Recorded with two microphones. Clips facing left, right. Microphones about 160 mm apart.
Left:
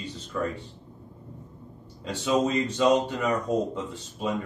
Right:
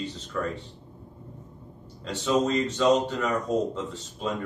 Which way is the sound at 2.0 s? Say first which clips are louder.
Even; 10° left (ahead or behind).